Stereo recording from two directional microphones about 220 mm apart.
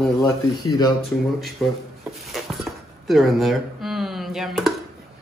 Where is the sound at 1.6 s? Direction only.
Centre (ahead or behind).